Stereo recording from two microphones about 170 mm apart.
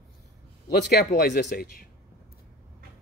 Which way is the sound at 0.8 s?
65° left (ahead or behind).